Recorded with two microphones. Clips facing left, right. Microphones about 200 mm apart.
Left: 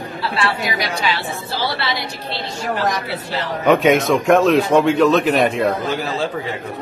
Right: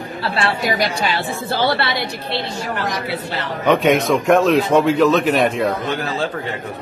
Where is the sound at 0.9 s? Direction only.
55° right (ahead or behind).